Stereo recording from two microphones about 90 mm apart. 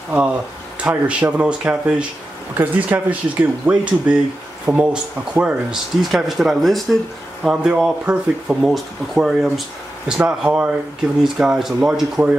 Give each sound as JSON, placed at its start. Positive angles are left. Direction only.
{"t": 0.8, "sound": "speech", "side_deg": -15}
{"t": 6.1, "sound": "speech", "side_deg": 0}
{"t": 8.7, "sound": "speech", "side_deg": -5}